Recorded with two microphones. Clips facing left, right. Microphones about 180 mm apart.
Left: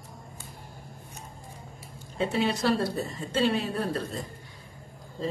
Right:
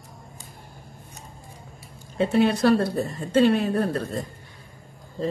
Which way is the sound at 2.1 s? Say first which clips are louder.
Right 7 dB; 60° right (ahead or behind).